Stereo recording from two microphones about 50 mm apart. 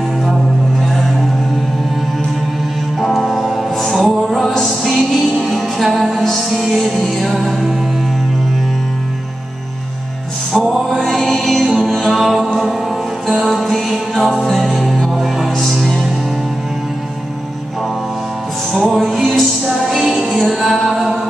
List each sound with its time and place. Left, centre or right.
3.0 s music: centre
10.5 s music: centre
13.5 s music: centre
18.7 s music: centre
19.6 s music: centre